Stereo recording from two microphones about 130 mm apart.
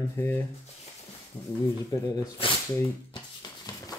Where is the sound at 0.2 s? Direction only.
15° left (ahead or behind).